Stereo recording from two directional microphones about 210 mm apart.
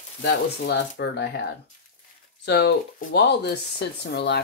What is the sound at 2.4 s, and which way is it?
Speech, 50° left (ahead or behind).